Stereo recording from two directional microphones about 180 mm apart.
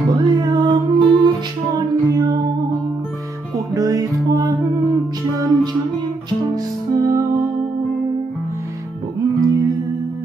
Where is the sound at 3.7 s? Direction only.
20° right (ahead or behind).